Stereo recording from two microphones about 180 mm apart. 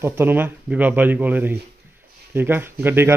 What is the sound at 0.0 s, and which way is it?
Speech, 10° right (ahead or behind).